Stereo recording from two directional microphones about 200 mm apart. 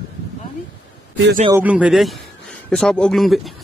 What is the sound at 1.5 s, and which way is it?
Speech, 10° right (ahead or behind).